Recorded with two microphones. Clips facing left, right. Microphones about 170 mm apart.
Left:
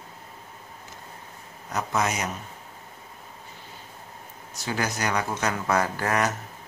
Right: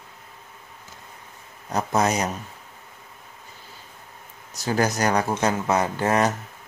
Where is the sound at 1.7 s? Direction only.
35° right (ahead or behind).